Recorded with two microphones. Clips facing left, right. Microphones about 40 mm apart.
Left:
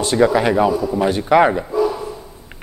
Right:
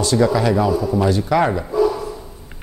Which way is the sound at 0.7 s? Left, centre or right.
Centre.